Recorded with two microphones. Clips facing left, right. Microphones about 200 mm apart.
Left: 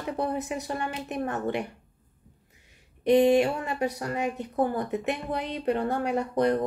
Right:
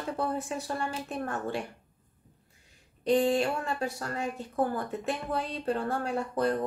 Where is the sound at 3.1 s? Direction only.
20° left (ahead or behind).